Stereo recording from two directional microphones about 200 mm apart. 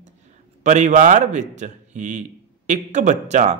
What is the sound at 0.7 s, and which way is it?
Speech, 40° right (ahead or behind).